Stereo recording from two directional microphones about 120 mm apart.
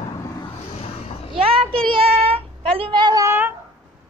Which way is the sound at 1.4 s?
50° right (ahead or behind).